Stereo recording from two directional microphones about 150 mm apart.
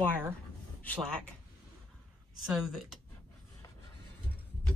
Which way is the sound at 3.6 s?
20° left (ahead or behind).